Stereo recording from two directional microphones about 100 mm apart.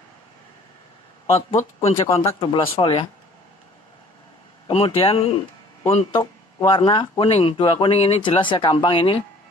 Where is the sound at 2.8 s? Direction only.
60° left (ahead or behind).